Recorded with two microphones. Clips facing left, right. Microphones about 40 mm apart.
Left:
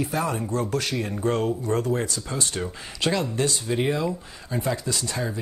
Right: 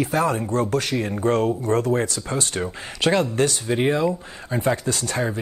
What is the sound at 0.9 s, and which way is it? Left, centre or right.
Speech, right.